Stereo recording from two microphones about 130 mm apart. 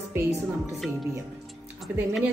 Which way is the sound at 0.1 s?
20° right (ahead or behind).